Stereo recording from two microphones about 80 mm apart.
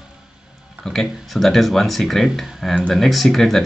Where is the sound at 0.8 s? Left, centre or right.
Centre.